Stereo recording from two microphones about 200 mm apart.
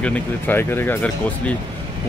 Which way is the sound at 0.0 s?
10° left (ahead or behind).